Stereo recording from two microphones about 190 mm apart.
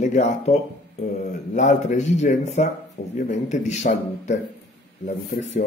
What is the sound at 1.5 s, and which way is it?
Speech, 40° left (ahead or behind).